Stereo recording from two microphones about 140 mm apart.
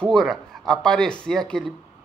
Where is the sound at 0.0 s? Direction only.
5° left (ahead or behind).